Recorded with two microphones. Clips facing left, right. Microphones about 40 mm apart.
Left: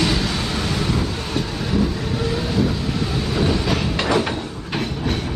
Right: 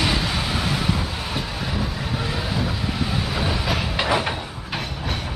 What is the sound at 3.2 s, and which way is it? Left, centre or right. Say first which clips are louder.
Train: left 4 dB; centre.